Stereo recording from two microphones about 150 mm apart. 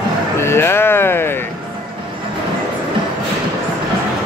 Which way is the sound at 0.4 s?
15° left (ahead or behind).